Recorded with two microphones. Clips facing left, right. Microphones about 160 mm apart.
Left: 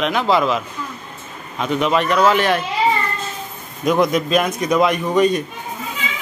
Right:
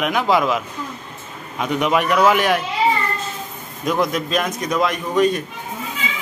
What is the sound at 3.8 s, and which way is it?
A man's voice, centre (ahead or behind).